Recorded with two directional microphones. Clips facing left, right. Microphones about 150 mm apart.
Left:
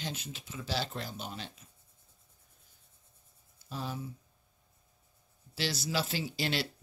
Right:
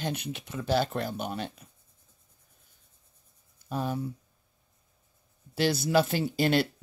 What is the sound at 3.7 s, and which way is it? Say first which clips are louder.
Speech: right 8 dB; 55° right (ahead or behind).